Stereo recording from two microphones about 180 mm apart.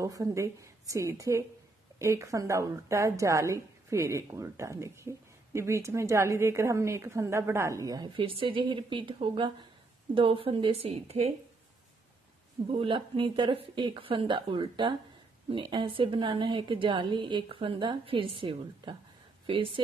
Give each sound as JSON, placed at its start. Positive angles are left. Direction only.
{"t": 0.0, "sound": "a woman's voice", "side_deg": -20}
{"t": 12.7, "sound": "a woman's voice", "side_deg": -30}